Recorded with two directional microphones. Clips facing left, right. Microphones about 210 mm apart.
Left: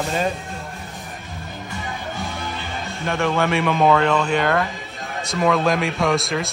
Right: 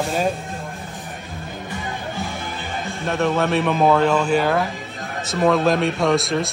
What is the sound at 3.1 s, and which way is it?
Speech, centre (ahead or behind).